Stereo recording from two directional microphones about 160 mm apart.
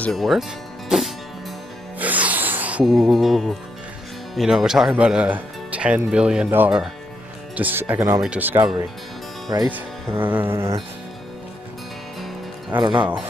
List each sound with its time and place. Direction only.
0.0 s speech: centre (ahead or behind)
2.0 s music: 10° right (ahead or behind)
2.8 s music: centre (ahead or behind)
4.4 s speech: 5° right (ahead or behind)
12.7 s speech: 25° right (ahead or behind)